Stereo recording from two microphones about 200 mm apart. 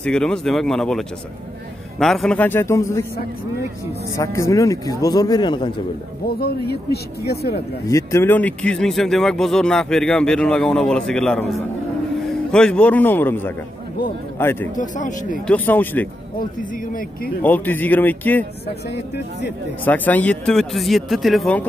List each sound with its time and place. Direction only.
0.0 s speech: 5° left (ahead or behind)
4.2 s speech: 15° left (ahead or behind)
6.2 s speech: 50° left (ahead or behind)
7.9 s a man's voice: 15° left (ahead or behind)
14.8 s speech: 40° left (ahead or behind)
15.4 s speech: 10° left (ahead or behind)
16.3 s speech: 45° left (ahead or behind)
17.4 s speech: 10° left (ahead or behind)
18.9 s speech: 60° left (ahead or behind)
19.8 s speech: 10° left (ahead or behind)